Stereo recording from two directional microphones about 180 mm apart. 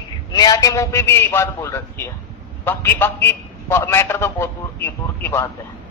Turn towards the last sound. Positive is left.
turn(degrees=10)  # may be behind; listen again after turning